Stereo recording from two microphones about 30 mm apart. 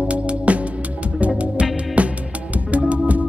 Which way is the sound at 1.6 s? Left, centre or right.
Right.